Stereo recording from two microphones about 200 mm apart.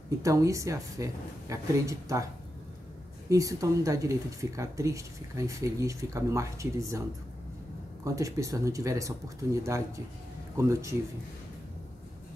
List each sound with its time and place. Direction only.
0.2 s speech: 15° right (ahead or behind)
3.3 s speech: 15° right (ahead or behind)
8.0 s speech: 15° right (ahead or behind)